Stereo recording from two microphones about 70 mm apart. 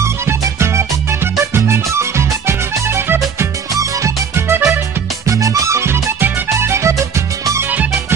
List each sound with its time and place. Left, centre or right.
0.0 s music: right
4.5 s music: right
5.2 s music: right